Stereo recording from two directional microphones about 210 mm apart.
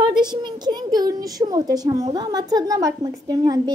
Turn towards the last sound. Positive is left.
turn(degrees=-15)  # may be behind; listen again after turning